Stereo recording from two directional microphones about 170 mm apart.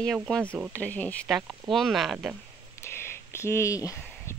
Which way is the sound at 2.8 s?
15° left (ahead or behind).